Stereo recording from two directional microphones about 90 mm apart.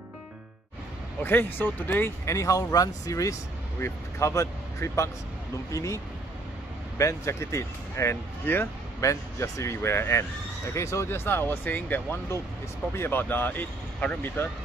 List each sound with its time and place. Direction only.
1.2 s speech: 25° left (ahead or behind)
7.0 s speech: 35° left (ahead or behind)